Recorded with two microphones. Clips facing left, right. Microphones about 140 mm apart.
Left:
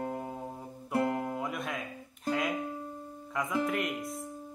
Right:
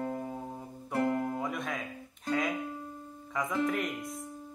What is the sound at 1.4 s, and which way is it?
Music, centre (ahead or behind).